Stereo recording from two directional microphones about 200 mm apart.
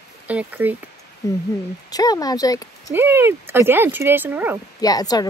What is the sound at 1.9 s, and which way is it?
Speech, 20° left (ahead or behind).